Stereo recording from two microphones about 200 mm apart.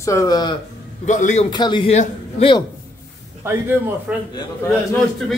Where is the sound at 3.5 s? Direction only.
15° right (ahead or behind).